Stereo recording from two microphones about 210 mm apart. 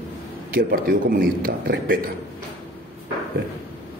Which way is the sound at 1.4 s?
45° right (ahead or behind).